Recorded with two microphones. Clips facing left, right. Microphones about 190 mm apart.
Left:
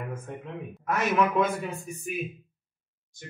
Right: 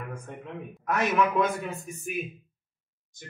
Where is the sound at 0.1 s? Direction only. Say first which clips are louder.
Left 2 dB; centre (ahead or behind).